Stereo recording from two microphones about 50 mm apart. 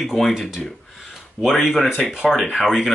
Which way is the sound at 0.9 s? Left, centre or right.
Centre.